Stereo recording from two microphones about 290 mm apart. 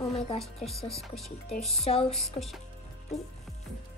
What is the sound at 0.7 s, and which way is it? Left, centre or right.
Speech, centre.